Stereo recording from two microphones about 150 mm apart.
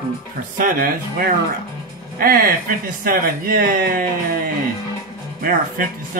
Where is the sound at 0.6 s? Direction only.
70° right (ahead or behind).